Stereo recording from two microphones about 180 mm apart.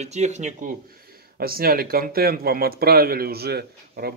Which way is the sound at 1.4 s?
55° right (ahead or behind).